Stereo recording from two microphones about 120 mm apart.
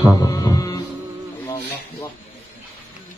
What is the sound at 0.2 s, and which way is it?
Music, 30° left (ahead or behind).